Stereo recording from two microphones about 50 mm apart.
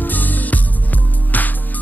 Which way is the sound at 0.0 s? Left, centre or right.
Left.